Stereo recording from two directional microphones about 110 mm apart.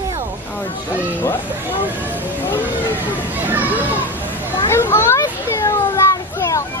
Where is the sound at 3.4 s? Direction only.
15° right (ahead or behind).